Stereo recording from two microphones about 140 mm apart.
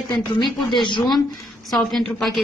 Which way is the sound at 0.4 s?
30° left (ahead or behind).